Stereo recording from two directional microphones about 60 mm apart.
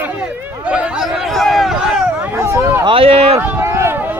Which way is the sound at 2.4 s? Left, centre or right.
Right.